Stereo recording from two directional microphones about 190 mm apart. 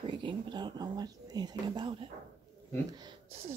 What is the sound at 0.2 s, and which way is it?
Speech, 25° right (ahead or behind).